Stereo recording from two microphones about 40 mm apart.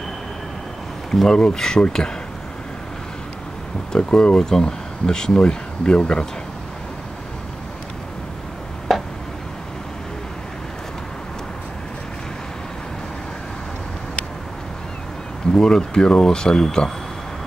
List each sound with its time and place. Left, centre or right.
1.1 s speech: centre
3.9 s speech: centre
8.9 s a sound: centre
15.5 s speech: centre